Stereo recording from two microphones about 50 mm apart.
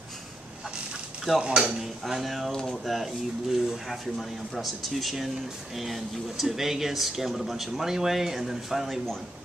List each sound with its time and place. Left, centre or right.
1.4 s speech: centre
1.8 s speech: centre